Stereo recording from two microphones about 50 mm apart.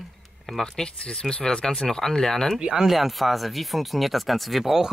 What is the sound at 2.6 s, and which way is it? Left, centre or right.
Speech, centre.